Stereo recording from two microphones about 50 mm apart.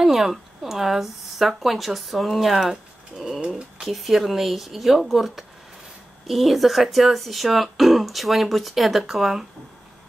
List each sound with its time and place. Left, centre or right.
0.0 s speech: centre
3.3 s speech: right
3.8 s speech: centre